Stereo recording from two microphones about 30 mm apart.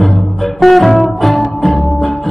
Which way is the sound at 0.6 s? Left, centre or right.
Centre.